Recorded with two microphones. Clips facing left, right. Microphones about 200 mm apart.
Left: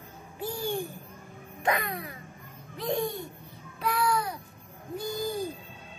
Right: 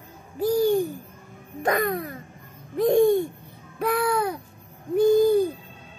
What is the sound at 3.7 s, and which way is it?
Babbling, 55° right (ahead or behind).